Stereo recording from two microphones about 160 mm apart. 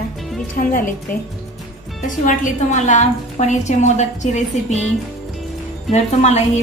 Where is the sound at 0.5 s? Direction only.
60° left (ahead or behind).